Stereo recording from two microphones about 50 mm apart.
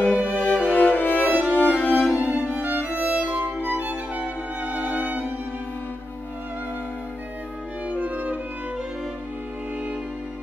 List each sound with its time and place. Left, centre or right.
0.1 s music: right
0.4 s music: left
2.0 s music: right
7.9 s music: right